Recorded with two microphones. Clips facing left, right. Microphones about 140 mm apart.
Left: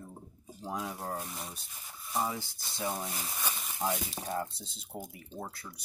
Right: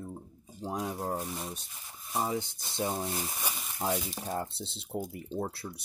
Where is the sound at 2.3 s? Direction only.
20° right (ahead or behind).